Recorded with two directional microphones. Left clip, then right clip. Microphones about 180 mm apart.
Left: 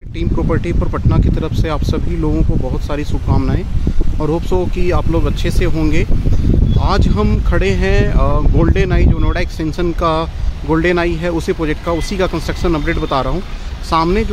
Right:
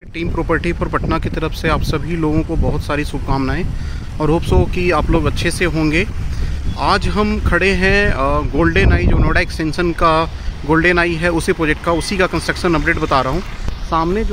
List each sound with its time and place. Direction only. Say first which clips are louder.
0.2 s speech: right 1 dB; centre (ahead or behind)
13.8 s speech: left 3 dB; 20° left (ahead or behind)